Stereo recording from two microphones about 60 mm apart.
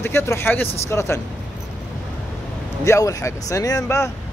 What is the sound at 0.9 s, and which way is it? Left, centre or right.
Speech, left.